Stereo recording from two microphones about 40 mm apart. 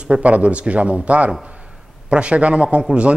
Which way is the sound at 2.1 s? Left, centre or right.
Right.